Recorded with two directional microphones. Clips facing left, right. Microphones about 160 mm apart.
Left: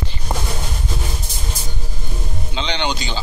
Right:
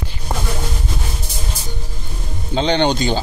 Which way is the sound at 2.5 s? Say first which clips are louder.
Right 8 dB; 45° right (ahead or behind).